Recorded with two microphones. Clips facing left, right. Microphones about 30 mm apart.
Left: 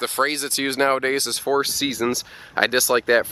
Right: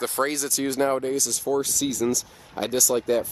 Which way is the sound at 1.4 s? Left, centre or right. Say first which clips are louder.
Left 4 dB; left.